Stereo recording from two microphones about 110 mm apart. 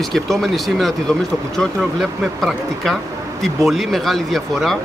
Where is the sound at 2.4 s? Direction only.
Centre (ahead or behind).